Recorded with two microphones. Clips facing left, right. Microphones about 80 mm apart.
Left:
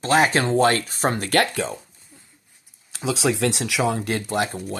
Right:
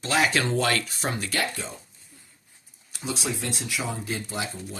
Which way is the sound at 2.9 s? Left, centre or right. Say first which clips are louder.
Left 8 dB; left.